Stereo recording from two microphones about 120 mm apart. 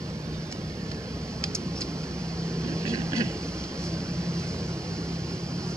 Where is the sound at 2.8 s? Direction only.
25° right (ahead or behind).